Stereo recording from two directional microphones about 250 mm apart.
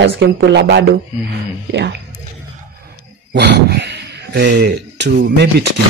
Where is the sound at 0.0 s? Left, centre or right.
Right.